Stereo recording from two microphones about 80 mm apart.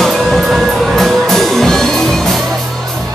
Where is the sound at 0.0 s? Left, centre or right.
Centre.